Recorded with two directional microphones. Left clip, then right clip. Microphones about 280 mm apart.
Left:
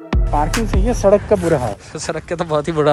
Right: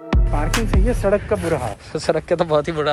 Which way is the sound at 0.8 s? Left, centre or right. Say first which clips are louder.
Left 7 dB; left.